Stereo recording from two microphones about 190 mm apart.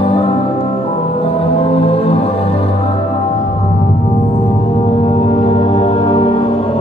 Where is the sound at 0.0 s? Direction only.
30° left (ahead or behind).